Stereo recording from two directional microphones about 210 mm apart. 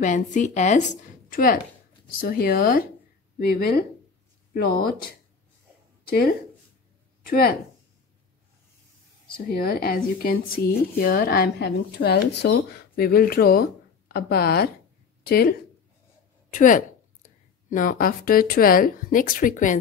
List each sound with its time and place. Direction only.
0.0 s a woman's voice: 35° left (ahead or behind)
6.0 s speech: 45° left (ahead or behind)
9.5 s speech: 45° left (ahead or behind)
16.5 s a woman's voice: 40° left (ahead or behind)